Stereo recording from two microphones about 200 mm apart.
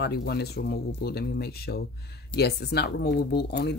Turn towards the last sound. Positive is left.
turn(degrees=55)  # may be behind; listen again after turning